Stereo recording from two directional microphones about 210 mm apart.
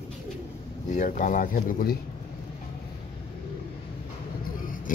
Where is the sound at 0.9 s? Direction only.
35° left (ahead or behind).